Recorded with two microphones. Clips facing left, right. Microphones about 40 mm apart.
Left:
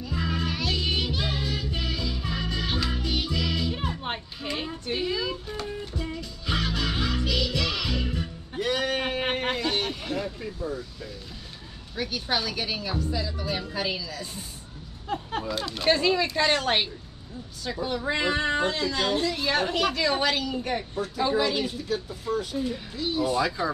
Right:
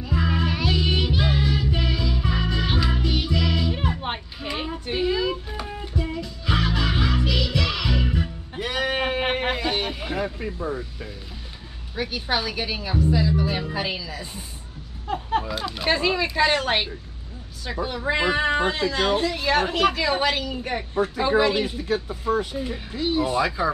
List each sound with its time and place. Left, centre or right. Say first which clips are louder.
0.0 s music: right 4 dB; centre
10.4 s speech: right 4 dB; right
11.9 s speech: right 3 dB; centre
21.2 s speech: right 3 dB; right